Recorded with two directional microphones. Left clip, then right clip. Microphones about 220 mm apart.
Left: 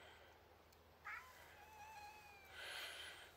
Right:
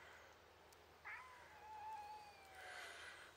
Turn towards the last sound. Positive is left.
turn(degrees=5)  # may be behind; listen again after turning